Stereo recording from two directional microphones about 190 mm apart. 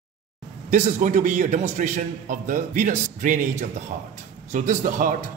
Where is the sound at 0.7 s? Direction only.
40° right (ahead or behind).